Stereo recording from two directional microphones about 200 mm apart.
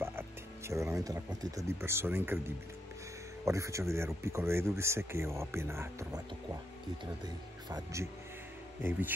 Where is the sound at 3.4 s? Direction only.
15° right (ahead or behind).